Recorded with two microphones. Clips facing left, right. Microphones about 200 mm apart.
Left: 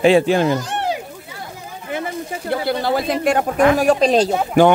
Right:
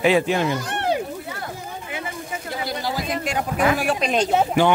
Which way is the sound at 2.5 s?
60° left (ahead or behind).